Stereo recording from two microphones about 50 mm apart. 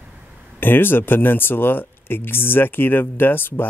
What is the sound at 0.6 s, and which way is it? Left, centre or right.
Speech, left.